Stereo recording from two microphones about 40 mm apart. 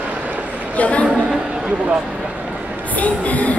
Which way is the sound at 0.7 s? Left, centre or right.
Left.